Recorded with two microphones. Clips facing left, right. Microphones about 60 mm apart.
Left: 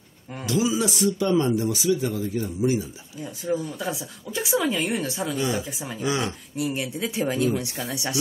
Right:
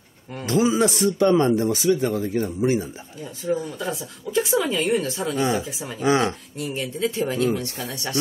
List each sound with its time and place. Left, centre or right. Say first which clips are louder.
0.5 s speech: right 4 dB; right
3.7 s a woman's voice: right 1 dB; centre
5.9 s speech: right 6 dB; right
6.5 s speech: left 1 dB; centre